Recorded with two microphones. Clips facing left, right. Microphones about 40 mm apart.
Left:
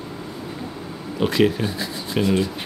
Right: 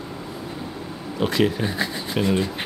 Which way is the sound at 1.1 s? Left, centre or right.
Centre.